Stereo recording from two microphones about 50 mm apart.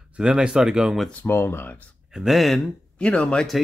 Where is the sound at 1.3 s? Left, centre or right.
Left.